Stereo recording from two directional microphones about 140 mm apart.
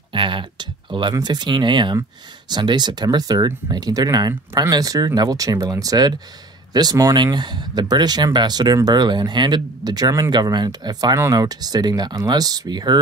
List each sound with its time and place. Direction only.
0.1 s speech: 35° right (ahead or behind)